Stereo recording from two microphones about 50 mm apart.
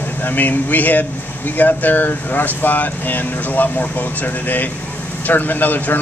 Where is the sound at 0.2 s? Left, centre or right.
Left.